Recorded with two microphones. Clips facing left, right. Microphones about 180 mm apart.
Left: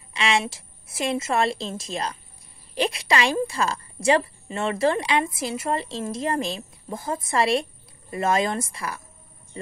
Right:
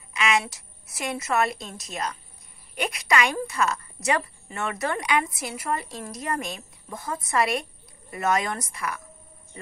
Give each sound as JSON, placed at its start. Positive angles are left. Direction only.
{"t": 0.1, "sound": "a woman's voice", "side_deg": 30}